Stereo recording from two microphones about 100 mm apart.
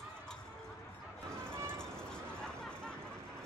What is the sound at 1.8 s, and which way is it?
Vehicle, 10° left (ahead or behind).